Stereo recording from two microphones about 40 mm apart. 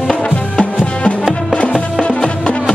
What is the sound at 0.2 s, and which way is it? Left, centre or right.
Music, left.